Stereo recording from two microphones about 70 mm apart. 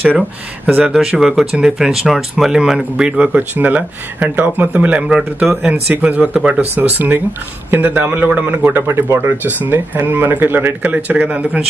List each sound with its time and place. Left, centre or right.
0.8 s speech: centre
3.3 s speech: right
5.9 s speech: right
6.7 s speech: right